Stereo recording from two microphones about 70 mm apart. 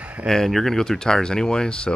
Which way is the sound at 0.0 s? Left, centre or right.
Centre.